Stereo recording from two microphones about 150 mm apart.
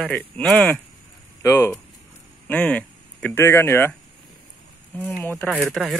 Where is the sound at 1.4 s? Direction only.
15° left (ahead or behind).